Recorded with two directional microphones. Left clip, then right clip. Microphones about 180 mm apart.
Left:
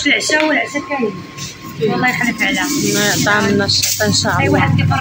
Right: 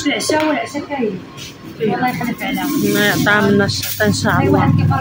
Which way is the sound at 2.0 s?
5° right (ahead or behind).